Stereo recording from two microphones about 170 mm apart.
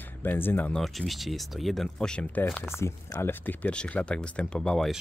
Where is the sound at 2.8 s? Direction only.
15° left (ahead or behind).